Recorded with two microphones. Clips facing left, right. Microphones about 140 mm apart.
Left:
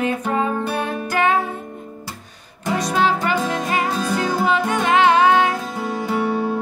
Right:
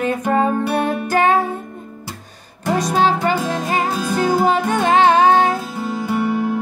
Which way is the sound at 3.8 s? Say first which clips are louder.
Right 1 dB; 10° right (ahead or behind).